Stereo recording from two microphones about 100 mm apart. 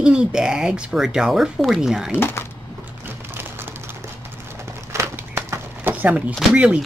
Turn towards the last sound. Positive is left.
turn(degrees=-10)  # may be behind; listen again after turning